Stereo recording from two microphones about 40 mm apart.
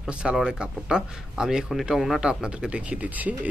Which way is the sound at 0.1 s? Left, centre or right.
Right.